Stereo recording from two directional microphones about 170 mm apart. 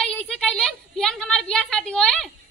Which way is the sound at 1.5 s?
5° left (ahead or behind).